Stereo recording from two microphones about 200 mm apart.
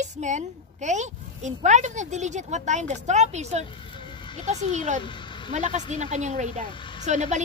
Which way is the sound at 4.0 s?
25° left (ahead or behind).